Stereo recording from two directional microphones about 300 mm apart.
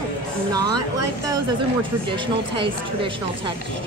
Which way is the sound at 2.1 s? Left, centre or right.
Centre.